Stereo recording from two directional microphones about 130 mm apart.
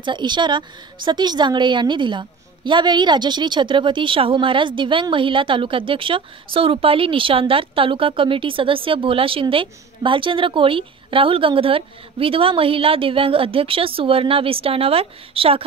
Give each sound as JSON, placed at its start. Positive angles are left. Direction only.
{"t": 0.0, "sound": "a woman's voice", "side_deg": -35}